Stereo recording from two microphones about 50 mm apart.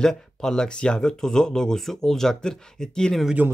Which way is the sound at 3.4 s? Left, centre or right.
Right.